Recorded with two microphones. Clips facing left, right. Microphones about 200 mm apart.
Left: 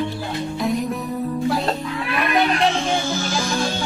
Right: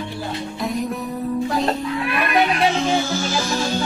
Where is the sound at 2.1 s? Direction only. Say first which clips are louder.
Left 1 dB; centre (ahead or behind).